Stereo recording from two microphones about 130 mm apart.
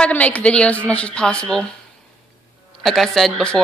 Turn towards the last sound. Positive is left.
turn(degrees=5)  # may be behind; listen again after turning